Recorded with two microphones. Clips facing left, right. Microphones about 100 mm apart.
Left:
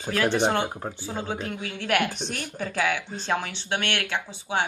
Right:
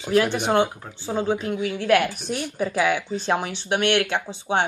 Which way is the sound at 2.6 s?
15° right (ahead or behind).